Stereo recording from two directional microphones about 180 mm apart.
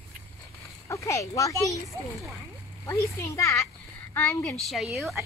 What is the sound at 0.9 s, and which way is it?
Speech, 15° left (ahead or behind).